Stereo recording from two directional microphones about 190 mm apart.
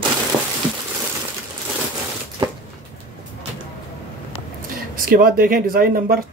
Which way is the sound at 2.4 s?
20° right (ahead or behind).